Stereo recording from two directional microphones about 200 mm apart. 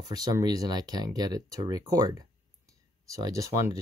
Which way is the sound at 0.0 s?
20° right (ahead or behind).